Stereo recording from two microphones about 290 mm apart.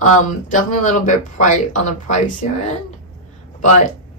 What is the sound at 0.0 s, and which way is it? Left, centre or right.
Speech, left.